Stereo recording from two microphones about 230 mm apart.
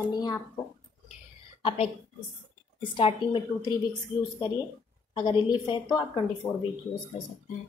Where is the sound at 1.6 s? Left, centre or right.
Left.